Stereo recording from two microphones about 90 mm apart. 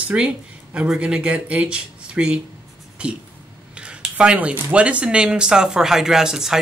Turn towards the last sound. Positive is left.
turn(degrees=-5)  # may be behind; listen again after turning